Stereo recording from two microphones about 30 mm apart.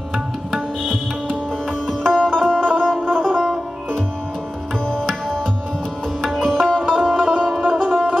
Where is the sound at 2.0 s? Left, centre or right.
Centre.